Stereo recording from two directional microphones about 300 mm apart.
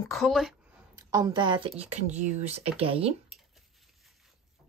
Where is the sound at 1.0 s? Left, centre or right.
Centre.